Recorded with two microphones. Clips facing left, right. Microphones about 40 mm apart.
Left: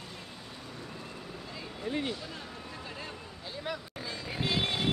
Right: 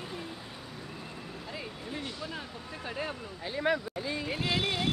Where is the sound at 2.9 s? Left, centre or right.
Right.